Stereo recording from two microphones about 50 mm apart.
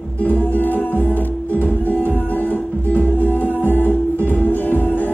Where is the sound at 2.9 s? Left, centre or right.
Left.